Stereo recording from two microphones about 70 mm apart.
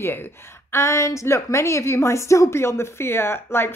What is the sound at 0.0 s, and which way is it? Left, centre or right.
A woman's voice, left.